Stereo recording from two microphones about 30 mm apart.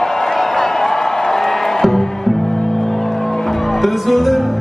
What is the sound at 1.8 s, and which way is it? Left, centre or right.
Music, centre.